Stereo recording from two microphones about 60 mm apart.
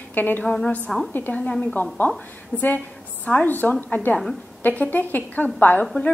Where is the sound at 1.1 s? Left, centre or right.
Left.